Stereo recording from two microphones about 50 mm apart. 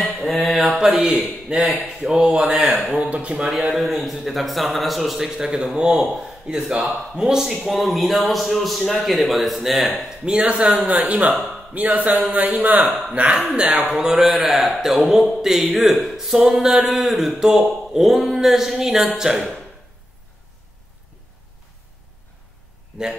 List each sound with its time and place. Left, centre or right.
0.0 s mantra: centre
2.1 s a man's voice: centre
3.0 s speech: right
3.7 s a man's voice: centre
10.7 s speech: right
13.7 s a man's voice: centre